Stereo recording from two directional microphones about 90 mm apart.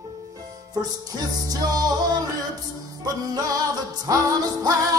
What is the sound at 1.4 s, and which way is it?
Music, 45° right (ahead or behind).